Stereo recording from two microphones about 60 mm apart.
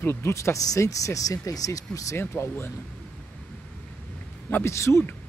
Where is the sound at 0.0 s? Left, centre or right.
Left.